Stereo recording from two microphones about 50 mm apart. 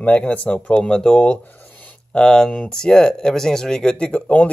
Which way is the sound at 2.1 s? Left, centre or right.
Centre.